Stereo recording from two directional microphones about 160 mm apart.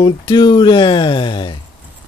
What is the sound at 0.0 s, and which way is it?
Speech, 25° left (ahead or behind).